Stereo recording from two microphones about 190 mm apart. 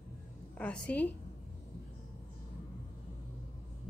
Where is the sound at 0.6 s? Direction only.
5° left (ahead or behind).